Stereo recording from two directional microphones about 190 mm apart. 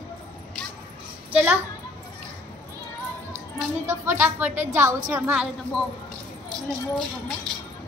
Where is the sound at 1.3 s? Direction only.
10° right (ahead or behind).